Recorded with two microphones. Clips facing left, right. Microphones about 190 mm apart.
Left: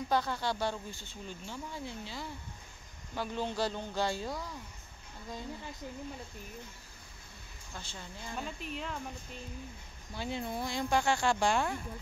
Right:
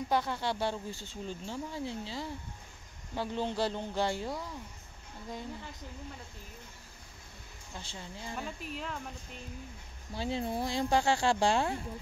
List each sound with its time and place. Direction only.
0.1 s speech: 20° right (ahead or behind)
3.2 s speech: 20° right (ahead or behind)
4.3 s speech: 5° right (ahead or behind)
7.7 s speech: 25° right (ahead or behind)
8.4 s speech: centre (ahead or behind)
10.1 s speech: 35° right (ahead or behind)